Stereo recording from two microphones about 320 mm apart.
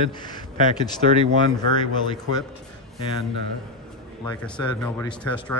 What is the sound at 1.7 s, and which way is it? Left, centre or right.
Speech, centre.